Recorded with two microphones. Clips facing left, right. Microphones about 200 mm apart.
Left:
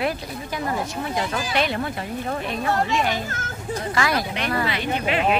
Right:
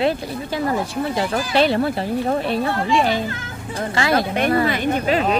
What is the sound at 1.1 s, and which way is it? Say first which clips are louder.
Speech: right 5 dB; 30° right (ahead or behind).